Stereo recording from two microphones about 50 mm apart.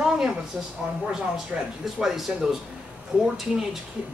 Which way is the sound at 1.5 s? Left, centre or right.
Centre.